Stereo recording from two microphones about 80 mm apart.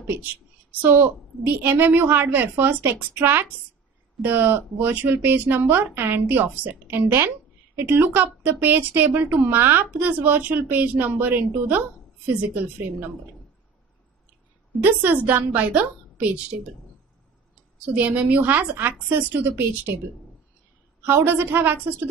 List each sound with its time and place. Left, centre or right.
0.1 s a woman's voice: right
14.8 s a woman's voice: right
17.9 s a woman's voice: centre
21.0 s a woman's voice: right